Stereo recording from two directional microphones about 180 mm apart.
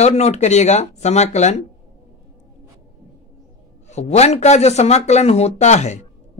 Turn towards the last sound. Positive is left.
turn(degrees=40)  # may be behind; listen again after turning